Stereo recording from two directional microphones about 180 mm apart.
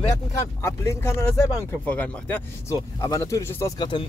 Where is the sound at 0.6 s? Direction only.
15° left (ahead or behind).